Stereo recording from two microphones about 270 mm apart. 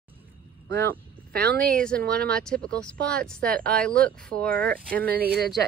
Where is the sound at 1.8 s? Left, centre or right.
Centre.